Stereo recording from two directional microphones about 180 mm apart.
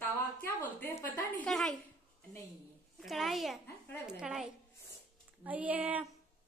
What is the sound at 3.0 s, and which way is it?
Speech, centre (ahead or behind).